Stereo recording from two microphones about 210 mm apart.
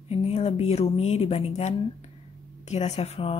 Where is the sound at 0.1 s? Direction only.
30° left (ahead or behind).